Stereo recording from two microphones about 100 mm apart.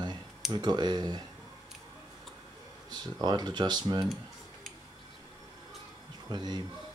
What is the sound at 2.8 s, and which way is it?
Speech, 45° right (ahead or behind).